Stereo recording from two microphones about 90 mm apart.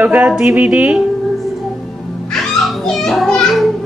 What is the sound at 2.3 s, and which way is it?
Children playing, centre (ahead or behind).